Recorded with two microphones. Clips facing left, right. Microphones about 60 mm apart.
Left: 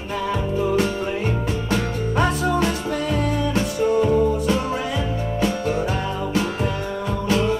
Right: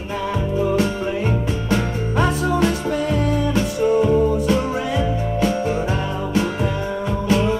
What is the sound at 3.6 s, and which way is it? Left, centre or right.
Music, right.